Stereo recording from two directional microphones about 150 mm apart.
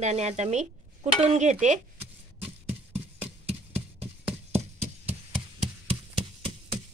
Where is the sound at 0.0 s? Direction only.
50° right (ahead or behind).